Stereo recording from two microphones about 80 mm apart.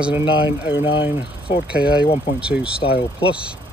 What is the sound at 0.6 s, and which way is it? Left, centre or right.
Speech, right.